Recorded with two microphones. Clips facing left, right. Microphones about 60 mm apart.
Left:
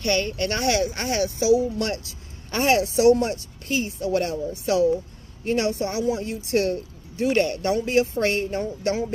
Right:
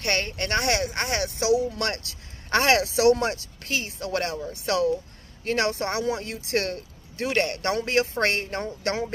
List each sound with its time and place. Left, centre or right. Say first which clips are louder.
0.0 s speech: left 4 dB; right
1.8 s speech: left 2 dB; right